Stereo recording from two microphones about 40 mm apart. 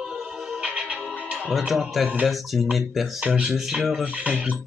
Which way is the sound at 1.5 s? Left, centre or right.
Centre.